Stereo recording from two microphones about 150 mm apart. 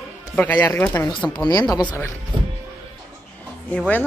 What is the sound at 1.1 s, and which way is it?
Speech, 5° left (ahead or behind).